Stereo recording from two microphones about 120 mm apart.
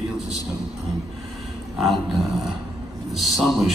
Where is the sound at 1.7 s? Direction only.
Centre (ahead or behind).